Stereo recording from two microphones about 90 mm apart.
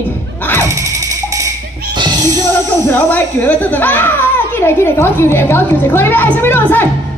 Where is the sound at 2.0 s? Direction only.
45° right (ahead or behind).